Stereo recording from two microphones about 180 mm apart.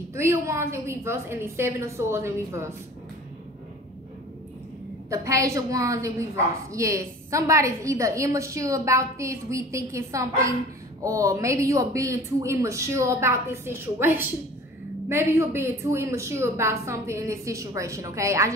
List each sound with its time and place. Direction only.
0.1 s a woman's voice: 15° right (ahead or behind)
5.1 s a woman's voice: 15° right (ahead or behind)